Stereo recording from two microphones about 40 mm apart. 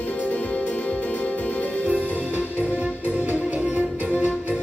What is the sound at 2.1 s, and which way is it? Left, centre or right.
Music, right.